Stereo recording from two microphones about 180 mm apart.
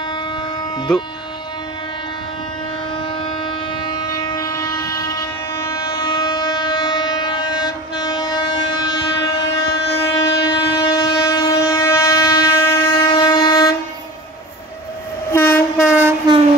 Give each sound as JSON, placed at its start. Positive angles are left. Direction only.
{"t": 3.7, "sound": "train", "side_deg": 20}
{"t": 15.3, "sound": "train", "side_deg": 10}